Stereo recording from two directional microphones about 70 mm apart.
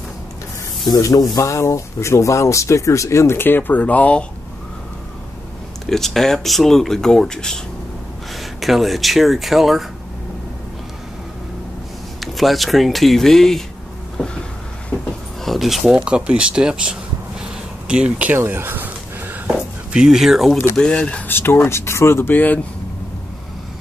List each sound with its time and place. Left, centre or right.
0.8 s speech: left; by 4.3 s centre
5.9 s speech: centre
12.2 s speech: centre
14.1 s vehicle: centre
15.4 s speech: centre
16.0 s speech: centre
18.3 s a sound: right
19.9 s speech: centre
20.7 s speech: centre
21.3 s speech: left